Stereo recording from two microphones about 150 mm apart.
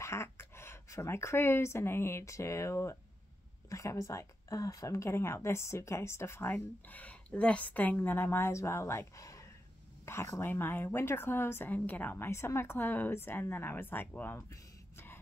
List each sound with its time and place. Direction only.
0.0 s speech: 20° left (ahead or behind)